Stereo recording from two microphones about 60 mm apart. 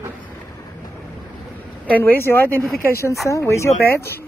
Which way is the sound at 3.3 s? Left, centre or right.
Left.